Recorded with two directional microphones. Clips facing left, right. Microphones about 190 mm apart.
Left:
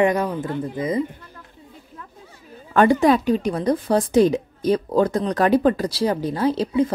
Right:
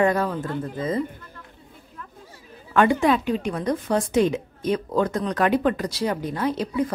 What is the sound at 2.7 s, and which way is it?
A woman's voice, 35° left (ahead or behind).